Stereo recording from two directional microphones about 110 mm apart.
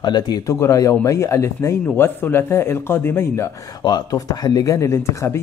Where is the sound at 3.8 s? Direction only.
35° left (ahead or behind).